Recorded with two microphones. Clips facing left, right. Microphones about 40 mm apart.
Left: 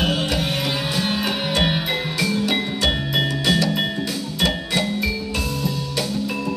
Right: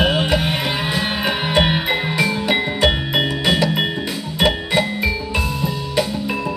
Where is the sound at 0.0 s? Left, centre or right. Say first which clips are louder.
Right 4 dB; right.